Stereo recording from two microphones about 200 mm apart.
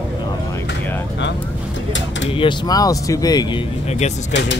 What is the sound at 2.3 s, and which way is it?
Speech, 25° left (ahead or behind).